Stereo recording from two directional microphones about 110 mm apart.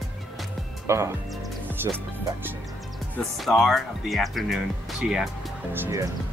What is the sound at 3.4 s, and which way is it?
Speech, centre (ahead or behind).